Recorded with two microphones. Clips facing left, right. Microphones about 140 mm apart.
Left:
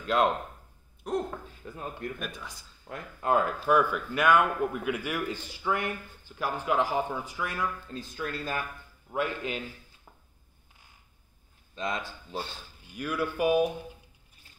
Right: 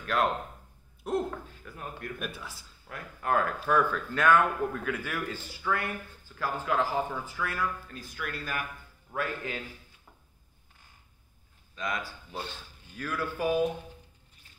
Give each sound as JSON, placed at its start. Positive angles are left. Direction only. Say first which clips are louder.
{"t": 0.0, "sound": "speech", "louder": "left 3 dB", "side_deg": 20}
{"t": 1.0, "sound": "speech", "louder": "right 1 dB", "side_deg": -5}
{"t": 1.6, "sound": "a man's voice", "louder": "left 3 dB", "side_deg": 25}
{"t": 2.1, "sound": "speech", "louder": "right 1 dB", "side_deg": -5}
{"t": 2.9, "sound": "a man's voice", "louder": "left 3 dB", "side_deg": 20}
{"t": 11.7, "sound": "a man's voice", "louder": "left 1 dB", "side_deg": 25}